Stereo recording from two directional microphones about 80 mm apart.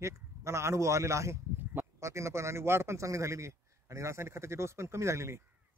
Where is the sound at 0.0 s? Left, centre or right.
Right.